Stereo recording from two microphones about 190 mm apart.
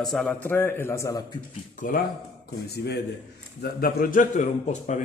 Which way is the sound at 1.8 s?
45° left (ahead or behind).